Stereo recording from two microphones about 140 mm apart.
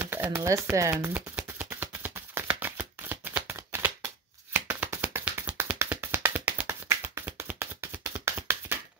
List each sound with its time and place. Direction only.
0.0 s speech: 15° right (ahead or behind)
0.9 s shuffling cards: 10° right (ahead or behind)